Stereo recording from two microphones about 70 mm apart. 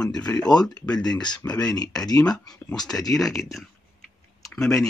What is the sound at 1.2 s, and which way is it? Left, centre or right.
Speech, left.